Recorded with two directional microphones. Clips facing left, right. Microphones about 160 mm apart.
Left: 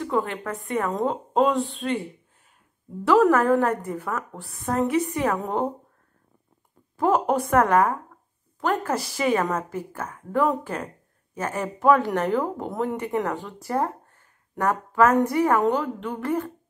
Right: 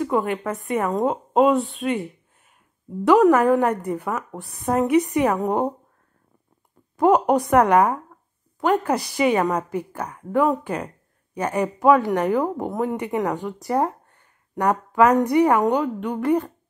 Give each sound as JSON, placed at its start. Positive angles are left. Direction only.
{"t": 0.0, "sound": "a woman's voice", "side_deg": -15}
{"t": 1.1, "sound": "speech", "side_deg": 0}
{"t": 1.8, "sound": "a woman's voice", "side_deg": -10}
{"t": 3.1, "sound": "a woman's voice", "side_deg": -15}
{"t": 7.0, "sound": "a woman's voice", "side_deg": -15}